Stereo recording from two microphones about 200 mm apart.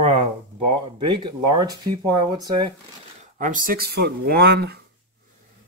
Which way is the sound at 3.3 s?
40° right (ahead or behind).